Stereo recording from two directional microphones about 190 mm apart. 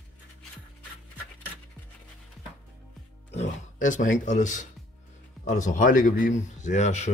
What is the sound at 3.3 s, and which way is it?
Music, 40° left (ahead or behind).